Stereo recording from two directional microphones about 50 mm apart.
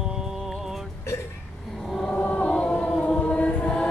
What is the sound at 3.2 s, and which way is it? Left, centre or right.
Choir, left.